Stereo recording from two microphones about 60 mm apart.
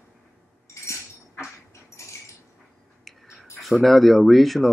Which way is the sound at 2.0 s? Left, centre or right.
Left.